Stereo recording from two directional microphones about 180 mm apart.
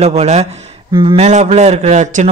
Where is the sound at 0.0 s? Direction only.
35° right (ahead or behind).